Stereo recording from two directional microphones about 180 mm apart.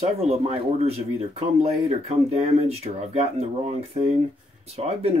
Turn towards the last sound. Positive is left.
turn(degrees=-35)  # may be behind; listen again after turning